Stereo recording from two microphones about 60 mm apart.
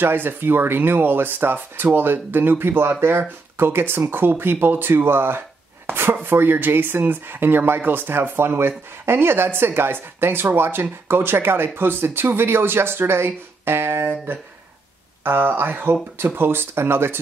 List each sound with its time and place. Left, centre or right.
0.0 s speech: right